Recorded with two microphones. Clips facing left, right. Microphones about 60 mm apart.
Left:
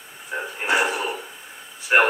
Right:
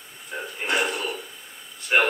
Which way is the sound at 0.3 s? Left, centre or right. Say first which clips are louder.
Left 4 dB; left.